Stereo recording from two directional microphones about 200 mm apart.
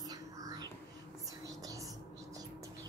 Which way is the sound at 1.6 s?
15° right (ahead or behind).